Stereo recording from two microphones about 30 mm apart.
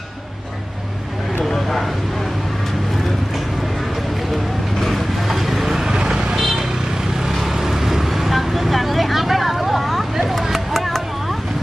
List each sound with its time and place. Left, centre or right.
1.4 s a sound: centre
4.7 s vehicle: centre
5.3 s vehicle: centre
5.9 s vehicle: right
6.3 s vehicle: centre
7.6 s vehicle: centre
10.7 s a sound: centre